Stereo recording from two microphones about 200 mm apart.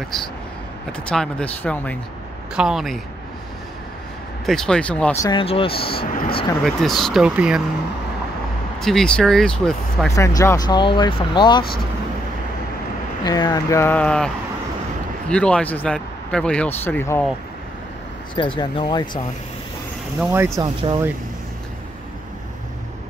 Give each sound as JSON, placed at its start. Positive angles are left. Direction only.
{"t": 1.0, "sound": "speech", "side_deg": 5}
{"t": 4.5, "sound": "speech", "side_deg": 5}
{"t": 5.2, "sound": "speech", "side_deg": 25}
{"t": 6.2, "sound": "a sound", "side_deg": 25}
{"t": 6.6, "sound": "speech", "side_deg": 0}
{"t": 8.7, "sound": "speech", "side_deg": 0}
{"t": 10.1, "sound": "speech", "side_deg": 15}
{"t": 13.2, "sound": "speech", "side_deg": 20}
{"t": 18.3, "sound": "speech", "side_deg": 25}
{"t": 20.2, "sound": "speech", "side_deg": -10}